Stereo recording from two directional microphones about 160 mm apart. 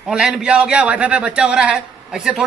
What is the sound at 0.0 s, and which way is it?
A man's voice, 5° right (ahead or behind).